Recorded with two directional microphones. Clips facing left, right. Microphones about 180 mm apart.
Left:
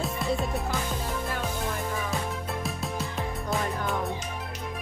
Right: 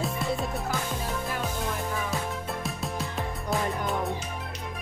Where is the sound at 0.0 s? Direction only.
Centre (ahead or behind).